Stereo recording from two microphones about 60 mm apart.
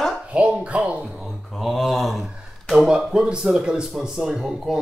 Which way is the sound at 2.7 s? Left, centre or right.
Centre.